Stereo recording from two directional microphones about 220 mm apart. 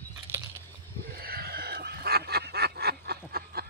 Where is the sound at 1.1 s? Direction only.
45° right (ahead or behind).